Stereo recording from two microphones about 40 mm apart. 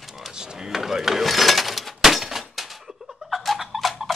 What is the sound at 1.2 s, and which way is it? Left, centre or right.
Breaking, centre.